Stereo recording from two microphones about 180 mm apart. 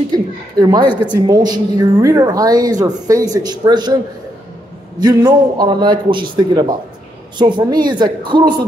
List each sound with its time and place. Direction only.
0.1 s a woman's voice: 20° right (ahead or behind)
5.0 s speech: 25° right (ahead or behind)